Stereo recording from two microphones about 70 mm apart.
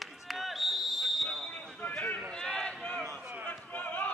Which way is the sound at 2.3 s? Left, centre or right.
Centre.